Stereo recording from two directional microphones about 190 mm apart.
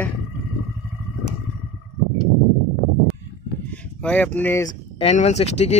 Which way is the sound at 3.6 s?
10° left (ahead or behind).